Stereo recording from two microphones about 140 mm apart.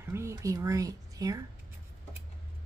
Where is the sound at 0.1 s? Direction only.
20° right (ahead or behind).